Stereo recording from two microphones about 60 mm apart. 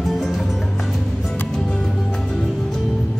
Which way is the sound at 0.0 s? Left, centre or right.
Centre.